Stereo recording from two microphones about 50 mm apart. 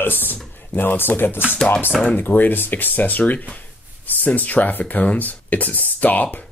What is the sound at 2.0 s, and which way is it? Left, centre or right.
Speech, left.